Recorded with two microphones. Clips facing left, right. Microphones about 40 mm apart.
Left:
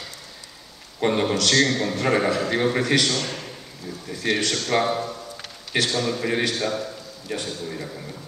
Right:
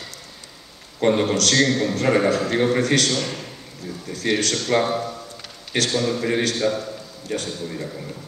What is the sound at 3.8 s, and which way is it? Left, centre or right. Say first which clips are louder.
Speech: right 2 dB; centre.